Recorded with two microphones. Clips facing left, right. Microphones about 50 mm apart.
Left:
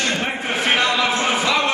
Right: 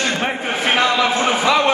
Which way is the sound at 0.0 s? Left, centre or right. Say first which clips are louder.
Right 2 dB; centre.